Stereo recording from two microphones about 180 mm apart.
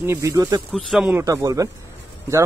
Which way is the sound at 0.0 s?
15° right (ahead or behind).